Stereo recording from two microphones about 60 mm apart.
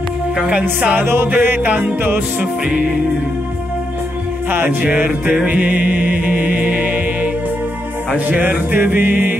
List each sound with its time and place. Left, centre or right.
0.4 s music: centre
1.0 s music: right
2.1 s music: right
4.5 s music: right
4.8 s music: right
8.3 s music: right